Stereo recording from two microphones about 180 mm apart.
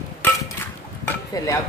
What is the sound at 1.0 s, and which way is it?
Dishes, 20° left (ahead or behind).